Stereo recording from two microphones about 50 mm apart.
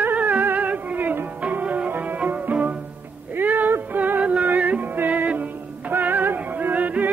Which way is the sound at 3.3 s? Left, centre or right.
Right.